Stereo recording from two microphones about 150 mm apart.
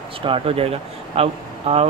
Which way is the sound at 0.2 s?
40° right (ahead or behind).